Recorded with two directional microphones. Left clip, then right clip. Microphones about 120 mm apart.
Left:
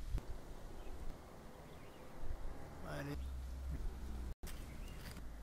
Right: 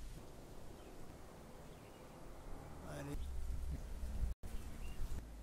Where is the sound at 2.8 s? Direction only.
25° left (ahead or behind).